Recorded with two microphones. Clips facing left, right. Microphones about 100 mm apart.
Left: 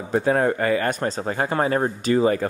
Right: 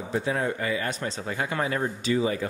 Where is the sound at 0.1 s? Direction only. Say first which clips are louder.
Left 8 dB; 50° left (ahead or behind).